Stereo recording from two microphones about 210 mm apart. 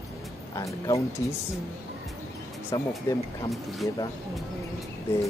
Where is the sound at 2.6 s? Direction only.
15° left (ahead or behind).